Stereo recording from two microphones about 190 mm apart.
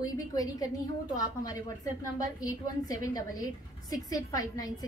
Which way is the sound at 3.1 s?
20° left (ahead or behind).